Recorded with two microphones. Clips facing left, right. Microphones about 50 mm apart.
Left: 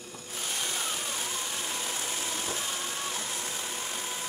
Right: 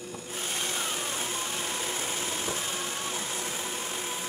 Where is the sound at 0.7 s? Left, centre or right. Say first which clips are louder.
Right 2 dB; centre.